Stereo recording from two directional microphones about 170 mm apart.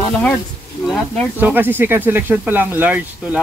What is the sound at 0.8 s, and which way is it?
Speech, centre (ahead or behind).